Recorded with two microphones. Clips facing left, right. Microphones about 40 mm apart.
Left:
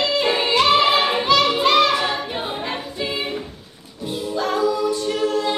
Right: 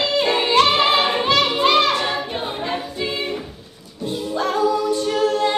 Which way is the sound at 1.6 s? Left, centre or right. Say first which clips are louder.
Even; right.